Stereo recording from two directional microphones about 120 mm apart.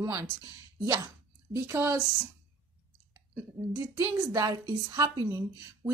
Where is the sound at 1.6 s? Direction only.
20° right (ahead or behind).